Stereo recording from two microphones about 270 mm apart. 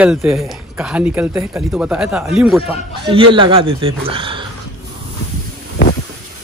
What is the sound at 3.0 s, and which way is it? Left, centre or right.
Speech, centre.